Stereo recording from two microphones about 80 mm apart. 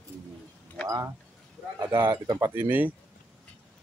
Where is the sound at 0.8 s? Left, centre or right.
Right.